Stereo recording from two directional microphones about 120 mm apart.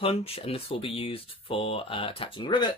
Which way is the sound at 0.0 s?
55° left (ahead or behind).